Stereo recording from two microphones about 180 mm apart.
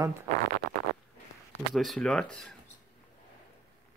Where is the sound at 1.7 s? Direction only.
5° left (ahead or behind).